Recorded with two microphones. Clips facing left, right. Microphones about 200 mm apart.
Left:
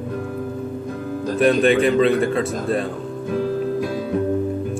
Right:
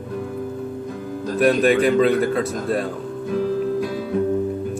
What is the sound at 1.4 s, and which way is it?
A man's voice, 5° right (ahead or behind).